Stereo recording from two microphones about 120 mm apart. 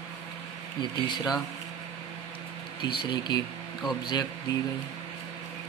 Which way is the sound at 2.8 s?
40° left (ahead or behind).